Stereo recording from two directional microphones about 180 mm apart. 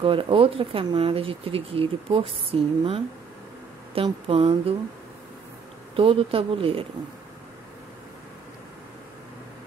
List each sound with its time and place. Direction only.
0.0 s speech: 30° right (ahead or behind)
5.9 s speech: 30° right (ahead or behind)